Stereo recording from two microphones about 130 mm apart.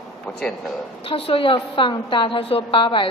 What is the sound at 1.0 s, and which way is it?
A woman's voice, 45° left (ahead or behind).